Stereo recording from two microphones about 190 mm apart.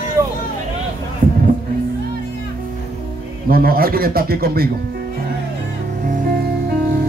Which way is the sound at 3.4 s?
50° right (ahead or behind).